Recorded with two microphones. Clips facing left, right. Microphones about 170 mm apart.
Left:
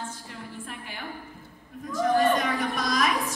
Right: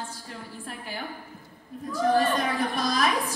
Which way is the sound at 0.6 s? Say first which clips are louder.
Right 3 dB; 35° right (ahead or behind).